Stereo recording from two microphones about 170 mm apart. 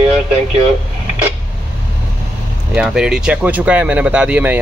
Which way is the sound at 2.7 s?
5° right (ahead or behind).